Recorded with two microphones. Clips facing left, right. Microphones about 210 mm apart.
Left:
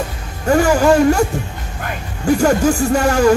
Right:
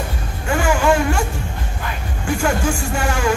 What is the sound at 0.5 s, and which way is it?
Speech, 40° left (ahead or behind).